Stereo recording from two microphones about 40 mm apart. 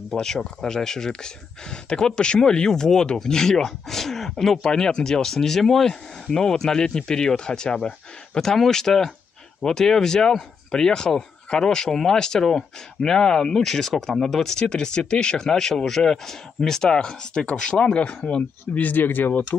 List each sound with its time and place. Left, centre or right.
0.1 s speech: centre
18.8 s speech: left